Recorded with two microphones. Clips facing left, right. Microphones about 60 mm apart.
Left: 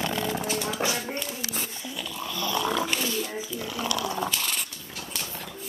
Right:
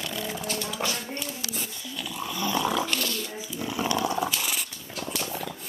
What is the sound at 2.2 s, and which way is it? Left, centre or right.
Snoring, centre.